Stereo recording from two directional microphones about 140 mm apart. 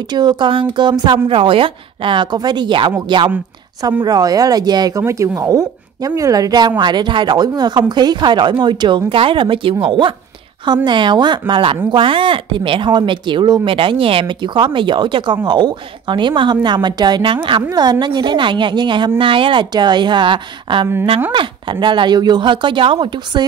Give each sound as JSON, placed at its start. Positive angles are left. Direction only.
{"t": 0.1, "sound": "speech", "side_deg": -30}